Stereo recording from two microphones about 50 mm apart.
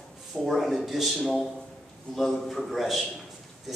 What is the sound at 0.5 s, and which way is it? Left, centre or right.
Speech, centre.